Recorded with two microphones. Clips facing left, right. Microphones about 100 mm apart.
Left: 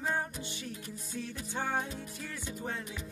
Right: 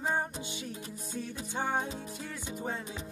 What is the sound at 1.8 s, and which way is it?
Music, 25° right (ahead or behind).